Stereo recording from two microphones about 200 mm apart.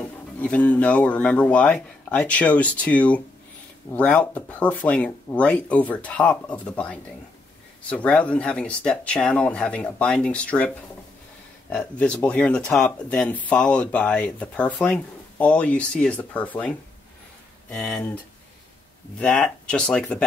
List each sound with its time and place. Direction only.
0.4 s speech: 5° left (ahead or behind)
11.7 s speech: 5° left (ahead or behind)
17.7 s speech: 5° left (ahead or behind)